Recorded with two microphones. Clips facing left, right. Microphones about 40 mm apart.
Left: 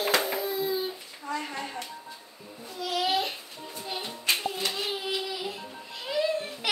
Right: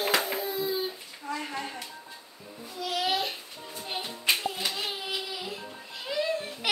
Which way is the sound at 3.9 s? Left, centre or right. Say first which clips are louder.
Right 1 dB; centre.